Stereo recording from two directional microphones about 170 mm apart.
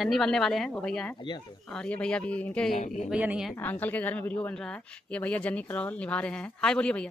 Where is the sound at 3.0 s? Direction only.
5° right (ahead or behind).